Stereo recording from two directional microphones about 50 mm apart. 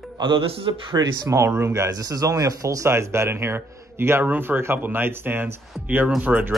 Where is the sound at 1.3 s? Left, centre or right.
Right.